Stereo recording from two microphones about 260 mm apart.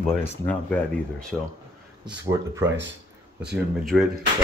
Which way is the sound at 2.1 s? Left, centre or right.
Centre.